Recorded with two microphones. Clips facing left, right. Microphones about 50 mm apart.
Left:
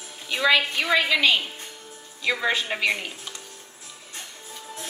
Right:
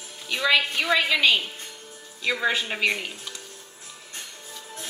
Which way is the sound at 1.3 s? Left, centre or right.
Left.